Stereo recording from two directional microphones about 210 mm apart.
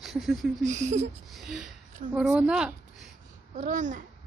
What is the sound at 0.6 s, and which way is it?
Speech, 35° right (ahead or behind).